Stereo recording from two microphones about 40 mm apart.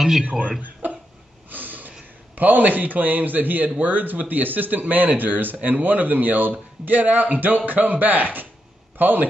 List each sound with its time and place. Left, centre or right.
0.2 s speech: right
1.5 s a man's voice: right